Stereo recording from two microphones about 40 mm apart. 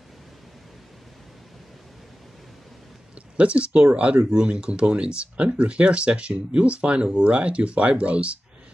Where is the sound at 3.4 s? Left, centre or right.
Right.